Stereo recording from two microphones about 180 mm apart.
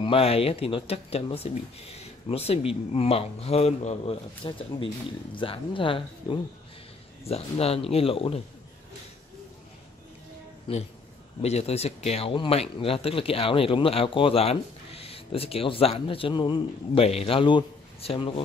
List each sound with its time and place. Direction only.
0.0 s speech: 30° left (ahead or behind)
10.7 s speech: 30° left (ahead or behind)